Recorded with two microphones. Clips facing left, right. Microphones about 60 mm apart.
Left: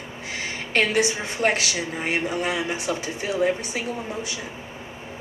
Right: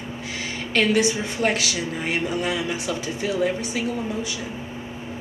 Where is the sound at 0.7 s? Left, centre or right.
Left.